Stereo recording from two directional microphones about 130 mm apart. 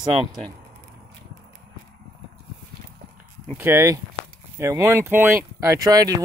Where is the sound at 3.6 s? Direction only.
20° right (ahead or behind).